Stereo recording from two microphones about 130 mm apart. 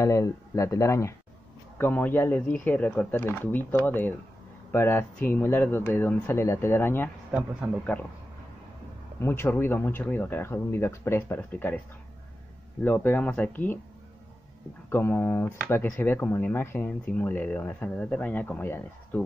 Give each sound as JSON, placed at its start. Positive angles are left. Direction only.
{"t": 0.0, "sound": "speech", "side_deg": 25}
{"t": 7.6, "sound": "a man's voice", "side_deg": -5}
{"t": 9.2, "sound": "speech", "side_deg": 20}
{"t": 12.8, "sound": "speech", "side_deg": 15}
{"t": 14.9, "sound": "speech", "side_deg": 20}